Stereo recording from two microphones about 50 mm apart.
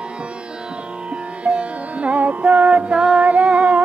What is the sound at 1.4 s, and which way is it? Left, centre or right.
Music, right.